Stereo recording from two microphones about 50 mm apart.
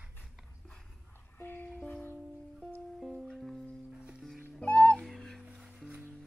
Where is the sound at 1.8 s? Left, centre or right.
Left.